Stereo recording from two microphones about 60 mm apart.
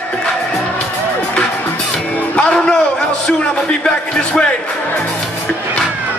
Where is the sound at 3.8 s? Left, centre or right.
Centre.